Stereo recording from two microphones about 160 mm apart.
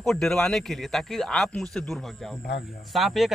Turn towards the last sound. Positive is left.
turn(degrees=0)  # may be behind; listen again after turning